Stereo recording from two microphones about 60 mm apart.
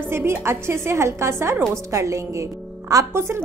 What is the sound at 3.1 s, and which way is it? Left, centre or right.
Speech, right.